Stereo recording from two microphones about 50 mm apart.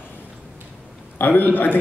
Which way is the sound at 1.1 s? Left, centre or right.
Left.